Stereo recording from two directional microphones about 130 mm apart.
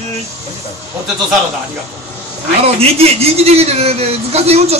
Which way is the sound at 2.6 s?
50° right (ahead or behind).